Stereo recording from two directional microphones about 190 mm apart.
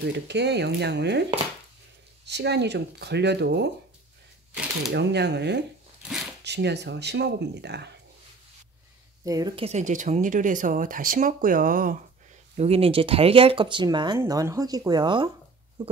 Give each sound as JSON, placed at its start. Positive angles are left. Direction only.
{"t": 0.0, "sound": "speech", "side_deg": -65}
{"t": 2.2, "sound": "speech", "side_deg": -65}
{"t": 4.9, "sound": "speech", "side_deg": -65}
{"t": 9.2, "sound": "speech", "side_deg": -20}
{"t": 9.6, "sound": "speech", "side_deg": -35}
{"t": 12.5, "sound": "speech", "side_deg": -30}